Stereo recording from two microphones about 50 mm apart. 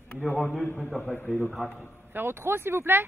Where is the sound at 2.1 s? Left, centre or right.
Right.